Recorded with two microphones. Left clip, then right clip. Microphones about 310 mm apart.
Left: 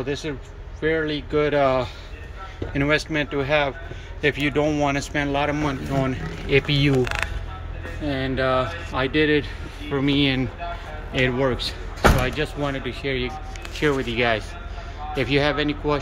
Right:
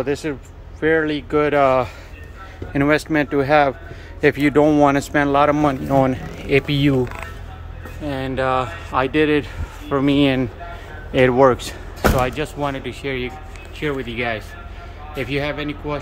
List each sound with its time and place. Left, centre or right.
0.0 s speech: centre
8.0 s speech: centre